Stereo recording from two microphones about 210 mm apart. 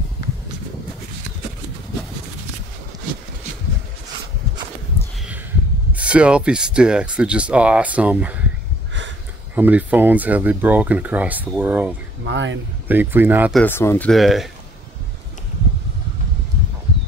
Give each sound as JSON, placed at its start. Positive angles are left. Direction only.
{"t": 5.9, "sound": "speech", "side_deg": -5}
{"t": 9.6, "sound": "speech", "side_deg": -5}
{"t": 12.3, "sound": "speech", "side_deg": -60}
{"t": 12.8, "sound": "speech", "side_deg": -10}
{"t": 13.6, "sound": "speech", "side_deg": 10}